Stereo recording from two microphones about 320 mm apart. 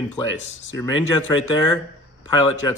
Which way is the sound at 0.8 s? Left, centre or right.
Centre.